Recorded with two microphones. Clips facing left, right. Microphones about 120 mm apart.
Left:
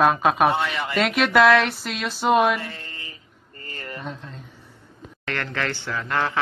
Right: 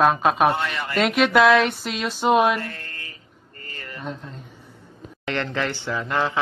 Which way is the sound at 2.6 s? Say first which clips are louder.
Right 1 dB; 20° left (ahead or behind).